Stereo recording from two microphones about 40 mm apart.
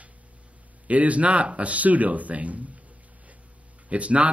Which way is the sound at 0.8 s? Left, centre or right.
Right.